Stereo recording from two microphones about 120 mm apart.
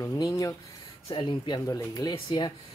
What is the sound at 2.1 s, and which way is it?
Speech, 45° left (ahead or behind).